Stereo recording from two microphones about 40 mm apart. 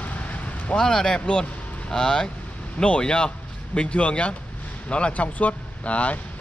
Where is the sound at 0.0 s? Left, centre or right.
Left.